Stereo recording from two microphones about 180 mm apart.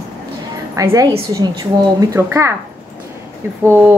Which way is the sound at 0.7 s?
15° right (ahead or behind).